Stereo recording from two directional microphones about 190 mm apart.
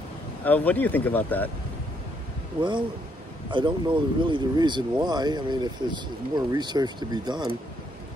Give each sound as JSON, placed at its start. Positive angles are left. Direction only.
{"t": 0.5, "sound": "speech", "side_deg": 10}
{"t": 3.4, "sound": "speech", "side_deg": -25}